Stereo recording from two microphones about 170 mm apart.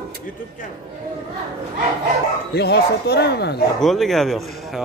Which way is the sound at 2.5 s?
75° left (ahead or behind).